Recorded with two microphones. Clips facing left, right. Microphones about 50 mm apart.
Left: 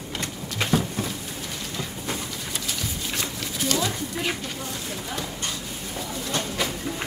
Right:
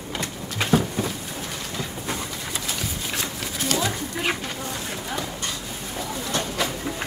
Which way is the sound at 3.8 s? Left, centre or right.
Right.